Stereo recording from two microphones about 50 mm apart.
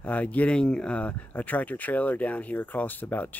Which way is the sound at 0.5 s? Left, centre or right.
Centre.